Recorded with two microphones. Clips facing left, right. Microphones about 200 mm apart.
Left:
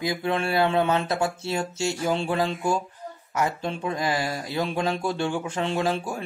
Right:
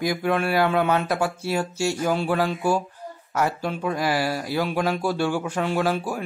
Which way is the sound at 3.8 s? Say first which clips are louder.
Right 3 dB; 20° left (ahead or behind).